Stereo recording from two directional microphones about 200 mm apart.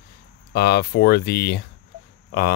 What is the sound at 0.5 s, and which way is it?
Speech, 55° left (ahead or behind).